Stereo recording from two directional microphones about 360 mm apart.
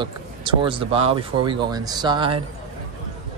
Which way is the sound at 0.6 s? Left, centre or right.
Centre.